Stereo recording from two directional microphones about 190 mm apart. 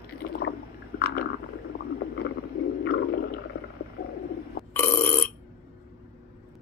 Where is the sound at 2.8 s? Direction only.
55° left (ahead or behind).